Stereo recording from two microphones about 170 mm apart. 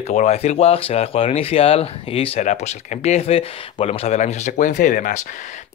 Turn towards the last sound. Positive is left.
turn(degrees=50)  # may be behind; listen again after turning